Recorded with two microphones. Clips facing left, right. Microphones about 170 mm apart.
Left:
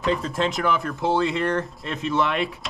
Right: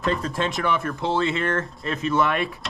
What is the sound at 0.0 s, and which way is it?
A man's voice, centre (ahead or behind).